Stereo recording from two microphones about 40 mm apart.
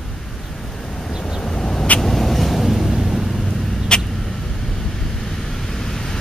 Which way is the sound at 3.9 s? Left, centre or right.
Left.